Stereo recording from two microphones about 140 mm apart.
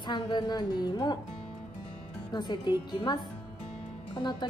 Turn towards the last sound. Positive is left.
turn(degrees=30)  # may be behind; listen again after turning